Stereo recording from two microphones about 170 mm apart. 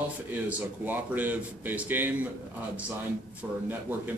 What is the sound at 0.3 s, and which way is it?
Speech, 10° right (ahead or behind).